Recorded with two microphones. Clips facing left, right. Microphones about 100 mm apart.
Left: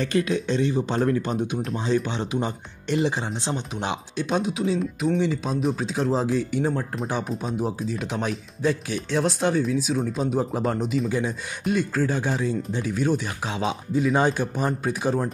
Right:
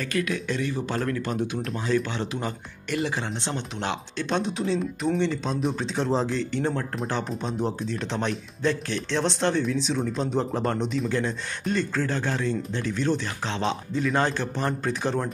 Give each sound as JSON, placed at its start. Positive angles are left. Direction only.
{"t": 0.0, "sound": "speech", "side_deg": 25}